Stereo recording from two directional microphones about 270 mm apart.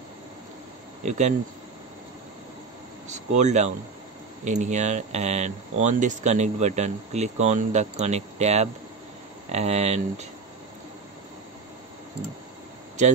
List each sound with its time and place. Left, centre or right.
1.0 s speech: right
3.1 s speech: right
13.0 s speech: right